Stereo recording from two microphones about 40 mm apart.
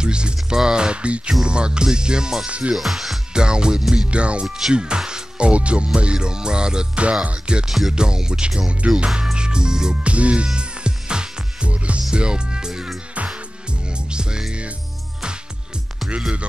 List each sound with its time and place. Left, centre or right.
0.0 s music: right
2.4 s music: right
2.7 s speech: centre
3.3 s music: centre
4.7 s speech: right
5.5 s music: right
7.6 s speech: centre
7.9 s music: centre
10.0 s music: right